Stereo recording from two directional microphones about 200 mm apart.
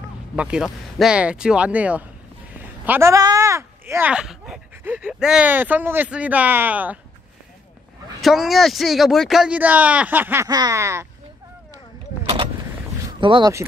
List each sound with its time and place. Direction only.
0.4 s speech: 5° right (ahead or behind)
8.2 s speech: centre (ahead or behind)
13.2 s speech: 20° right (ahead or behind)